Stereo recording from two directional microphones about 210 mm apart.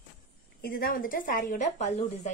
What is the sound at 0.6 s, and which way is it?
A woman's voice, 45° left (ahead or behind).